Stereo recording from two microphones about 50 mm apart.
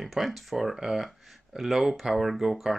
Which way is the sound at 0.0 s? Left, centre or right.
Centre.